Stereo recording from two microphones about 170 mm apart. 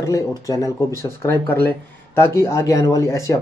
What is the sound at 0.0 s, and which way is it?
Speech, 20° left (ahead or behind).